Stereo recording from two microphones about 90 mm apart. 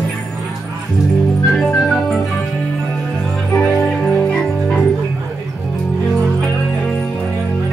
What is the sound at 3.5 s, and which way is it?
Music, 15° left (ahead or behind).